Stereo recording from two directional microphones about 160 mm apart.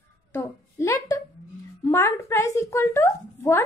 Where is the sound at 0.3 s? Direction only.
15° left (ahead or behind).